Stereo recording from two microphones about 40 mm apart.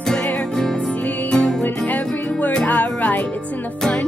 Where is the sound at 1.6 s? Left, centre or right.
Left.